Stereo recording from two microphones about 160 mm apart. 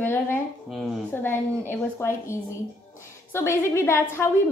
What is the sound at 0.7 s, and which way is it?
Speech, centre (ahead or behind).